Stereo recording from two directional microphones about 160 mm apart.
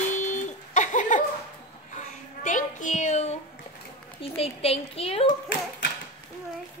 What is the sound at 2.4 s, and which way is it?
Speech, 50° left (ahead or behind).